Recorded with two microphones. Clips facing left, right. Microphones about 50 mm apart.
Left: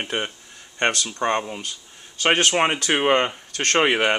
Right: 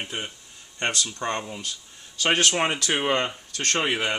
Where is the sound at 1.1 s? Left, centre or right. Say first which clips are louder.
Left 6 dB; left.